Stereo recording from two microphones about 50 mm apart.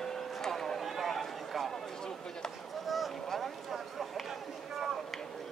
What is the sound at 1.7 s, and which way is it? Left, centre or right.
Run, centre.